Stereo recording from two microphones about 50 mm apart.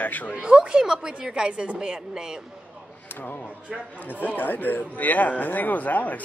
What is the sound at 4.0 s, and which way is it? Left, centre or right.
Speech, left.